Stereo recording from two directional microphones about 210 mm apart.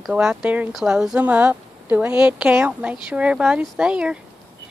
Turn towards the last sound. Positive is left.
turn(degrees=-5)  # may be behind; listen again after turning